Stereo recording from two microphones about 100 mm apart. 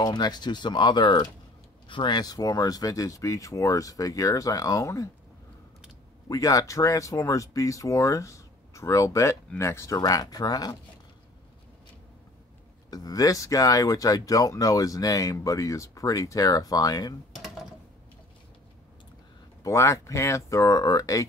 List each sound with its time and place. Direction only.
0.0 s speech: 45° left (ahead or behind)
6.2 s speech: 35° left (ahead or behind)
12.9 s speech: 35° left (ahead or behind)
19.6 s speech: 30° left (ahead or behind)